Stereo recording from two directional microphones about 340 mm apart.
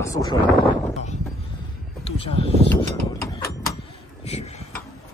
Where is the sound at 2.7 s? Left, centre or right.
Centre.